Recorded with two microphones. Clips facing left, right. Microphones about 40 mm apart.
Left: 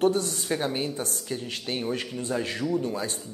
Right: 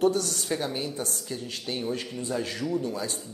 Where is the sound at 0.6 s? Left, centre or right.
Left.